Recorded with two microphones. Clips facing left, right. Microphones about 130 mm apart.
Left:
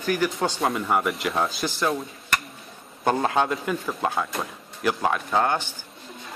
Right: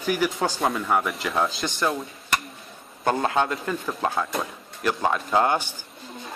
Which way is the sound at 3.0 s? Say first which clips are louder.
Left 1 dB; 10° left (ahead or behind).